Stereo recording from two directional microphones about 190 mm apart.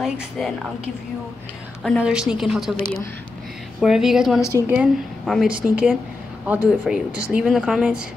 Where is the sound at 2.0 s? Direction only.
5° right (ahead or behind).